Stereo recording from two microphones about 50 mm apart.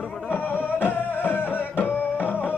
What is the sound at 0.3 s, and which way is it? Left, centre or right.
Music, left.